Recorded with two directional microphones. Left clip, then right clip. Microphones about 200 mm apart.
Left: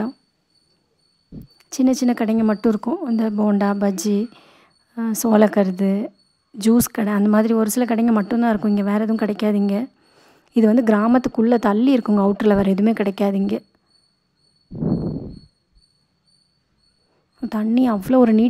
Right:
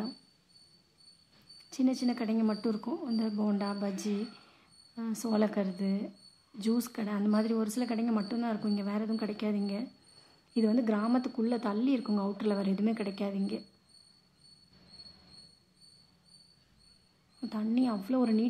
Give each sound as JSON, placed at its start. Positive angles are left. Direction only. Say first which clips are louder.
{"t": 1.6, "sound": "speech", "louder": "left 12 dB", "side_deg": 40}
{"t": 17.4, "sound": "speech", "louder": "left 12 dB", "side_deg": 40}